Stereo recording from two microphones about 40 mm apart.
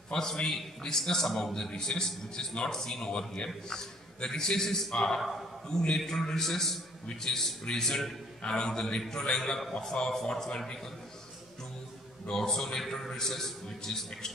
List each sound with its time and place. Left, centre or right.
0.1 s a man's voice: centre
10.0 s a man's voice: left
12.3 s a man's voice: centre